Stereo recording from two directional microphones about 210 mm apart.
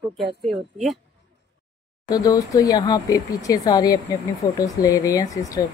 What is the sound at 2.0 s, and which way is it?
Speech, 15° left (ahead or behind).